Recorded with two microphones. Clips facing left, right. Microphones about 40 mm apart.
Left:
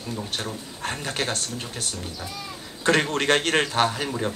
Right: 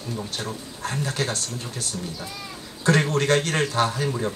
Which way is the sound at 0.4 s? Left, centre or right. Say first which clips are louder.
Even; left.